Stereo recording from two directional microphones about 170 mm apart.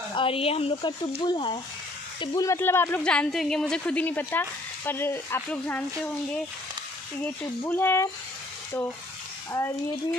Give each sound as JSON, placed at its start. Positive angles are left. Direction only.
{"t": 0.1, "sound": "a woman's voice", "side_deg": 30}
{"t": 7.6, "sound": "a woman's voice", "side_deg": 15}